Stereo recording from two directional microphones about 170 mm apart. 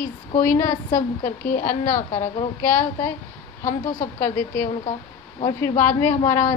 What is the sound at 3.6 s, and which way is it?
Speech, 55° left (ahead or behind).